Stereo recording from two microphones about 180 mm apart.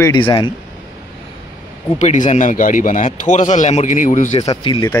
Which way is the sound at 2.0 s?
40° left (ahead or behind).